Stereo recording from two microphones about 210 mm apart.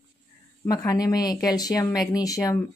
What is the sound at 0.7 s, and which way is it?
A woman's voice, 15° left (ahead or behind).